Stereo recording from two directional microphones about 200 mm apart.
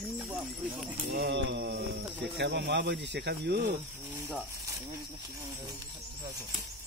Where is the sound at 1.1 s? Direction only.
55° right (ahead or behind).